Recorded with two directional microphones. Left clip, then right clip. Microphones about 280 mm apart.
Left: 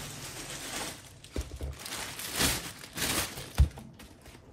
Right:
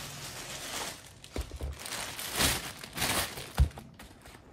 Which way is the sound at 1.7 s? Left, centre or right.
Right.